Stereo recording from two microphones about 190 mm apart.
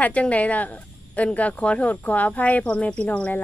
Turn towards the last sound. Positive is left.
turn(degrees=10)  # may be behind; listen again after turning